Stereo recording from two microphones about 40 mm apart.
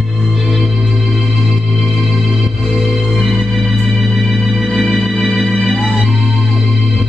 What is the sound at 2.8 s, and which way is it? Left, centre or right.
Music, centre.